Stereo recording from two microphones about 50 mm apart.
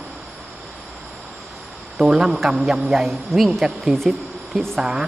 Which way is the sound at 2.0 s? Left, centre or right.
Centre.